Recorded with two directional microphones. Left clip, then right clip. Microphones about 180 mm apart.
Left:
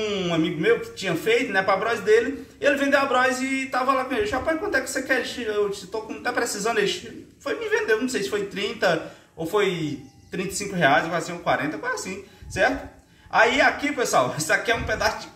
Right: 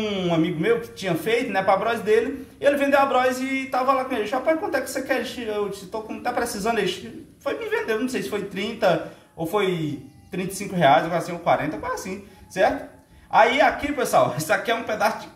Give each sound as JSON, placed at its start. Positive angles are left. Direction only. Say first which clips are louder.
{"t": 0.0, "sound": "a man's voice", "louder": "right 1 dB", "side_deg": -10}
{"t": 13.3, "sound": "a man's voice", "louder": "right 1 dB", "side_deg": -15}